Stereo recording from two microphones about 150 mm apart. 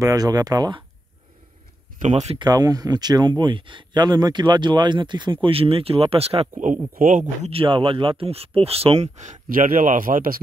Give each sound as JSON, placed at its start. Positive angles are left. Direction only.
{"t": 0.0, "sound": "speech", "side_deg": -25}
{"t": 2.0, "sound": "speech", "side_deg": -50}
{"t": 2.3, "sound": "speech", "side_deg": -25}
{"t": 6.9, "sound": "speech", "side_deg": -65}
{"t": 7.4, "sound": "speech", "side_deg": -35}